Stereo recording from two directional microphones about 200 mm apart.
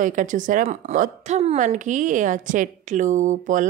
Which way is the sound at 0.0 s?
40° right (ahead or behind).